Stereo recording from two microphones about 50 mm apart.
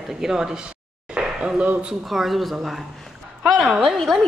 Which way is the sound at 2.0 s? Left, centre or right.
Centre.